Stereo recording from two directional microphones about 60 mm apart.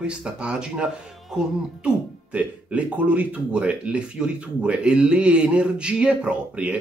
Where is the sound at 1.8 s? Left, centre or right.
Right.